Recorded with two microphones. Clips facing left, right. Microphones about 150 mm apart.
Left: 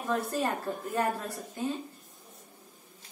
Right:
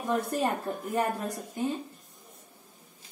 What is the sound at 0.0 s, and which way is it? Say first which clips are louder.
Speech: right 2 dB; 10° right (ahead or behind).